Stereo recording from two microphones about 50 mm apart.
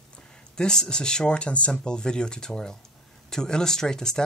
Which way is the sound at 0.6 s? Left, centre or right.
Centre.